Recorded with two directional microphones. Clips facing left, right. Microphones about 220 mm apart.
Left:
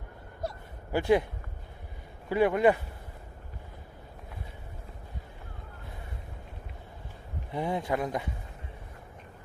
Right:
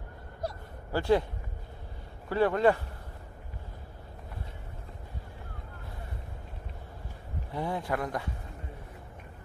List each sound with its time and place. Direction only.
0.9 s a man's voice: 15° left (ahead or behind)
2.2 s a man's voice: 15° left (ahead or behind)
7.5 s speech: 20° left (ahead or behind)